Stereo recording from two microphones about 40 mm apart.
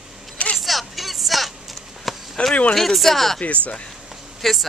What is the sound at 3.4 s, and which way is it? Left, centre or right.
Speech, left.